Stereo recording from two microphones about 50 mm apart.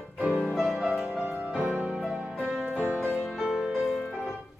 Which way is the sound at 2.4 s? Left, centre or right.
Centre.